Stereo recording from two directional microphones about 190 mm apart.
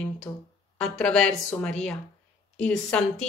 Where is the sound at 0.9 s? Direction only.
5° left (ahead or behind).